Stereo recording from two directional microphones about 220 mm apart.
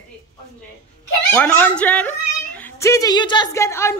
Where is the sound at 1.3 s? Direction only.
5° left (ahead or behind).